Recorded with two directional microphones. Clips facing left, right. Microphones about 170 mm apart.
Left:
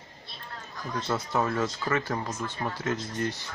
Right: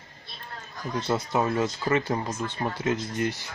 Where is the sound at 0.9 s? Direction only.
20° right (ahead or behind).